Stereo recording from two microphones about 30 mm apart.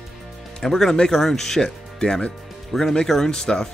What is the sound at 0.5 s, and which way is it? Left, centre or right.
Speech, centre.